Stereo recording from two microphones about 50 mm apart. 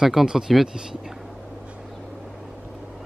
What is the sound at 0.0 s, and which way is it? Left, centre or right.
Speech, centre.